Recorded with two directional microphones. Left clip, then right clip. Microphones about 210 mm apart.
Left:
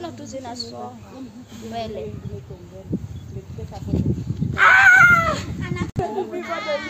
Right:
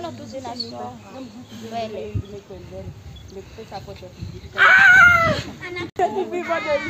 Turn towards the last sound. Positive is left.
turn(degrees=50)  # may be behind; listen again after turning